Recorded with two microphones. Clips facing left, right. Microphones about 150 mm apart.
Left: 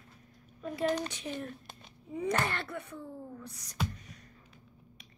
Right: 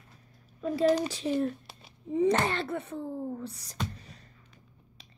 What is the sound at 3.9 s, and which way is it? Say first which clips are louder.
Music: right 1 dB; 30° right (ahead or behind).